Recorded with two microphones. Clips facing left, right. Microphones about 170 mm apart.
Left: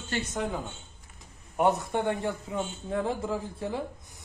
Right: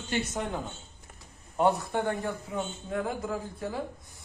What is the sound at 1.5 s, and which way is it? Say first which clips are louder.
A man's voice: even; 20° left (ahead or behind).